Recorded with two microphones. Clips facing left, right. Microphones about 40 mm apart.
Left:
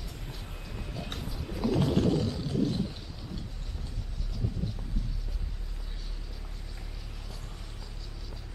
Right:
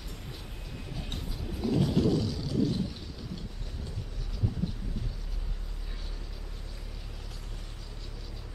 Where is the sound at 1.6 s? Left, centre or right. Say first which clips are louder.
Even; left.